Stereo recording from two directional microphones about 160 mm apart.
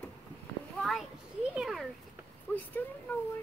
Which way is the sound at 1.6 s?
Centre (ahead or behind).